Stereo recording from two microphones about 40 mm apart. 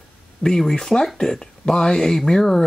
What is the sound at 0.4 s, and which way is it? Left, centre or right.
Speech, centre.